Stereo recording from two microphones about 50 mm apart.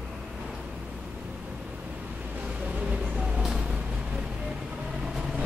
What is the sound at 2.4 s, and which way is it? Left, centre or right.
Vehicle, right.